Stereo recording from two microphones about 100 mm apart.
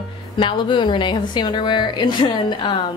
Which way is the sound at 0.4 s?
55° left (ahead or behind).